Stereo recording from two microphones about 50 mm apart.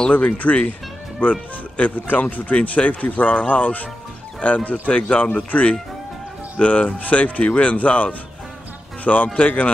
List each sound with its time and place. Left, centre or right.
0.1 s speech: left